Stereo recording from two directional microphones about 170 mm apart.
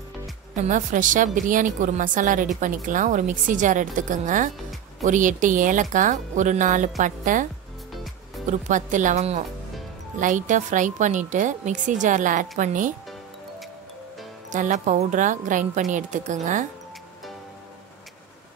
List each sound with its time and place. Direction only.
0.7 s speech: 50° right (ahead or behind)
8.5 s speech: 45° right (ahead or behind)
14.5 s speech: 45° right (ahead or behind)